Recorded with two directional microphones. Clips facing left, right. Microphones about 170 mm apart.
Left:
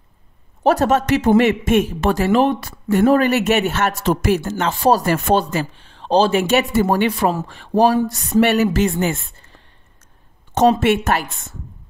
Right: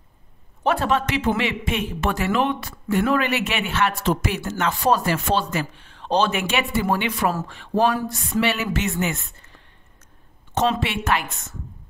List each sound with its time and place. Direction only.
0.7 s speech: 40° left (ahead or behind)
5.0 s speech: 50° left (ahead or behind)
5.5 s speech: 30° left (ahead or behind)
10.8 s speech: 45° left (ahead or behind)